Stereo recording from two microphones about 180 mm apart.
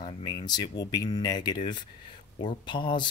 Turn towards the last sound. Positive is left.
turn(degrees=25)  # may be behind; listen again after turning